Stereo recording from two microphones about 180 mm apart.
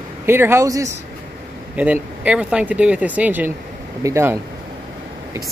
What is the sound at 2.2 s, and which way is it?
Speech, 5° right (ahead or behind).